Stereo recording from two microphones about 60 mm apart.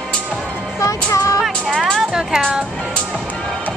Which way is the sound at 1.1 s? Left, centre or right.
Left.